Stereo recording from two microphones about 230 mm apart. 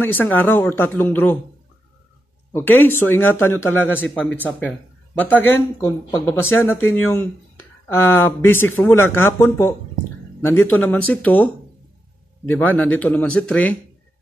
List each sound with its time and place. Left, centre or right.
0.0 s speech: centre
2.5 s speech: centre
12.4 s speech: centre